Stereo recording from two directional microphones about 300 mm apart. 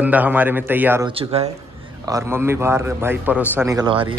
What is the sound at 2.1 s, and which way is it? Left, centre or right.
A man's voice, centre.